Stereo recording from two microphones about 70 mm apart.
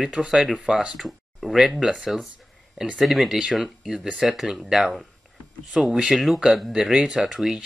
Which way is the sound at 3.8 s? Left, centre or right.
Centre.